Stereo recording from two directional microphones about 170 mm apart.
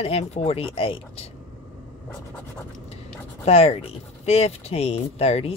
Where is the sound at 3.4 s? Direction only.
35° left (ahead or behind).